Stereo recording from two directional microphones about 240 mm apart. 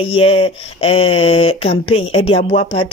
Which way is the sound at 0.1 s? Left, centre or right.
Left.